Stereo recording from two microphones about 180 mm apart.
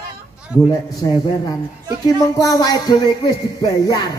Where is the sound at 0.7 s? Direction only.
25° left (ahead or behind).